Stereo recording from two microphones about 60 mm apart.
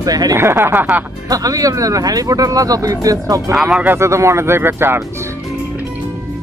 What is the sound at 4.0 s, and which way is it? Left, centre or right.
Speech, right.